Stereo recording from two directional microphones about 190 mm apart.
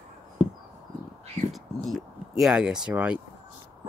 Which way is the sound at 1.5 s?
Centre (ahead or behind).